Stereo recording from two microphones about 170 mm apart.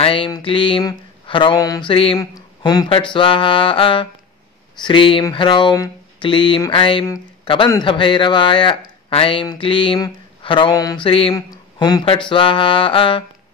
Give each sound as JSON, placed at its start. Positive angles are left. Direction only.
{"t": 0.0, "sound": "a man's voice", "side_deg": 30}